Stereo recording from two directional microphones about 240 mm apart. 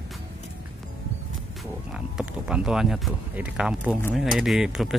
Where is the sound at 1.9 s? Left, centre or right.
Centre.